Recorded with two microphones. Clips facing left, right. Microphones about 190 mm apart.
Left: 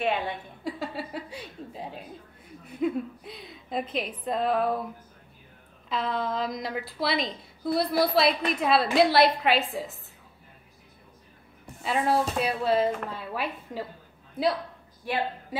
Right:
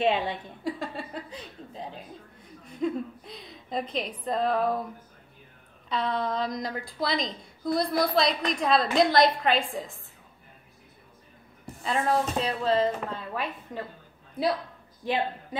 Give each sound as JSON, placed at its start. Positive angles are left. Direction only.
{"t": 0.0, "sound": "a woman's voice", "side_deg": -20}
{"t": 0.7, "sound": "a sound", "side_deg": 5}
{"t": 2.6, "sound": "a woman's voice", "side_deg": 5}
{"t": 5.9, "sound": "a woman's voice", "side_deg": 0}
{"t": 11.8, "sound": "a woman's voice", "side_deg": 5}